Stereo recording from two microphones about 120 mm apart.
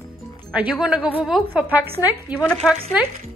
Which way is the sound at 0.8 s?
10° right (ahead or behind).